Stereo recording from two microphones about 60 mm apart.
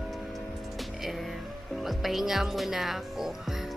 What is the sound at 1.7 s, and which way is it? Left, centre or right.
Speech, centre.